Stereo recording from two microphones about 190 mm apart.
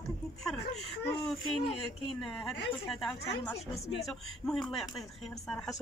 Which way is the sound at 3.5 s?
35° left (ahead or behind).